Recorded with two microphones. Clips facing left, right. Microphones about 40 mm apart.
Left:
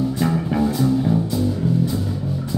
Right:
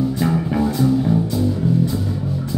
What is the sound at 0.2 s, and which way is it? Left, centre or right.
Music, centre.